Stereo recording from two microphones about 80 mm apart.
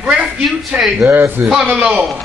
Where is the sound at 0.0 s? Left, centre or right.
Centre.